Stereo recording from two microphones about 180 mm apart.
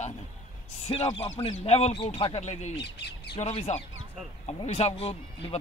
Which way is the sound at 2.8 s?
70° left (ahead or behind).